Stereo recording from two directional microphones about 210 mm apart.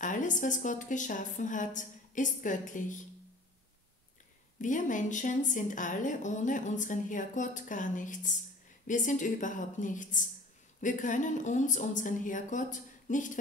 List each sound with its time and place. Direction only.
0.0 s a woman's voice: 35° left (ahead or behind)
4.6 s a woman's voice: 35° left (ahead or behind)